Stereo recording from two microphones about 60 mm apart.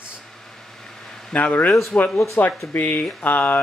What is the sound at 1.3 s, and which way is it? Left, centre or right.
A man's voice, left.